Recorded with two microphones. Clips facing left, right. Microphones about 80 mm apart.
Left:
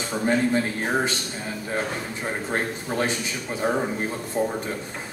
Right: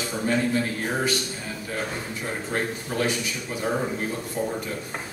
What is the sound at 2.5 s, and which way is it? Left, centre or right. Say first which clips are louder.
Speech: even; left.